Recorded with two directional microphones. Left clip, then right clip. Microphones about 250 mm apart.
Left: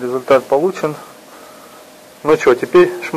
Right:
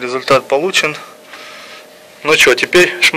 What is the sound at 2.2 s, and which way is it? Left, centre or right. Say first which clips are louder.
Speech: right 3 dB; centre.